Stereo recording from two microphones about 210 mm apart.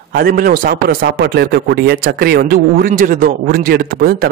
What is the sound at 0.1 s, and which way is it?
A man's voice, 45° right (ahead or behind).